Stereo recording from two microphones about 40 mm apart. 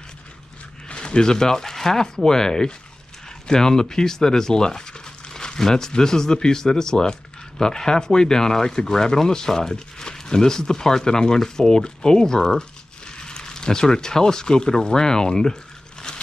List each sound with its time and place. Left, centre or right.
0.8 s speech: left